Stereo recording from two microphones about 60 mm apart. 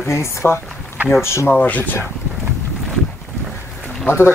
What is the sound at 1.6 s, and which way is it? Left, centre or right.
Speech, left.